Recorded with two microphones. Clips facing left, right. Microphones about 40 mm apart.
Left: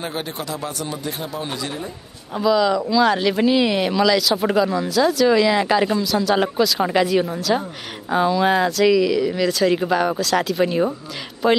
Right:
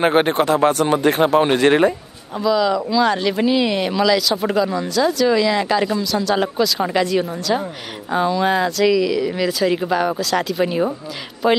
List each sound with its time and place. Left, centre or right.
0.0 s speech: right
2.3 s speech: centre